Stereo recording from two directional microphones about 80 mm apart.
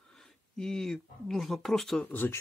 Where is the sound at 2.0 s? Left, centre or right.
Left.